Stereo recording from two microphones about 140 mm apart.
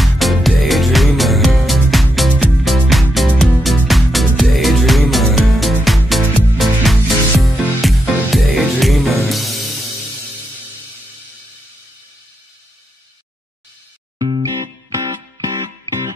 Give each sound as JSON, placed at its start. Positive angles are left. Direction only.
{"t": 0.0, "sound": "music", "side_deg": 0}
{"t": 14.1, "sound": "music", "side_deg": -35}